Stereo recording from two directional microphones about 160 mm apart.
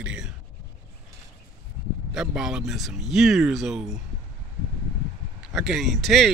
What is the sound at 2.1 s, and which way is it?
Speech, 5° right (ahead or behind).